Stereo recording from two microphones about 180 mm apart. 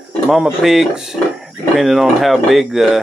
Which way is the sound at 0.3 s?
Centre (ahead or behind).